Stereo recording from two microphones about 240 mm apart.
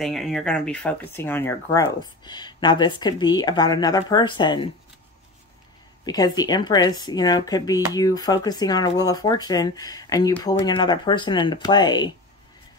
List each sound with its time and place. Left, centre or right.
0.0 s speech: centre
6.0 s speech: centre